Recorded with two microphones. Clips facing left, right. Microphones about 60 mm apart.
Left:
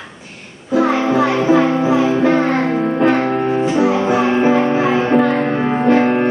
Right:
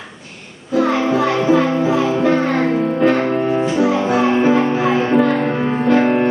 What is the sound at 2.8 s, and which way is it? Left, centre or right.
Music, left.